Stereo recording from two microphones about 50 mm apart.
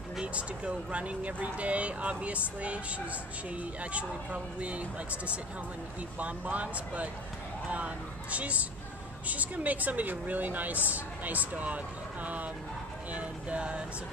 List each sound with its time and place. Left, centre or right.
0.2 s a woman's voice: right